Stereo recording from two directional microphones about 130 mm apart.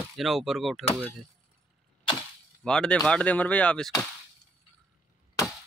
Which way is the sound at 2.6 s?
5° left (ahead or behind).